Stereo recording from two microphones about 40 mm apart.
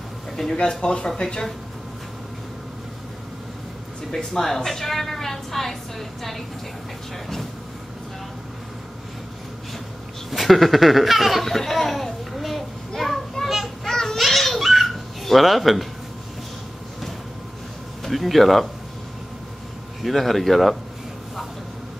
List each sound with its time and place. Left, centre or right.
0.7 s speech: centre
4.1 s a woman's voice: centre
10.3 s a woman's voice: centre
11.4 s a sound: centre
13.8 s a sound: centre
14.1 s baby laughter: centre
14.6 s giggle: centre
18.0 s a woman's voice: centre
20.0 s a woman's voice: centre